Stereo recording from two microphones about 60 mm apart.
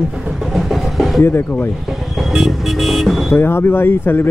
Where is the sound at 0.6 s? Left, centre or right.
Centre.